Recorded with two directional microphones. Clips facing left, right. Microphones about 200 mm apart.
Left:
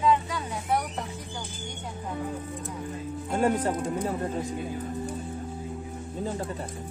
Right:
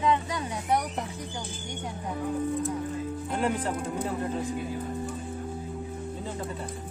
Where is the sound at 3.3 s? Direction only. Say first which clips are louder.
Left 4 dB; 45° left (ahead or behind).